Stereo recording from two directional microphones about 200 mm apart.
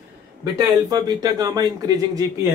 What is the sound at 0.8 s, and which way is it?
Speech, 20° right (ahead or behind).